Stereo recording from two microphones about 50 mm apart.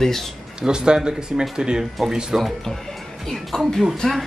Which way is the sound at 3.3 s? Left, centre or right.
Centre.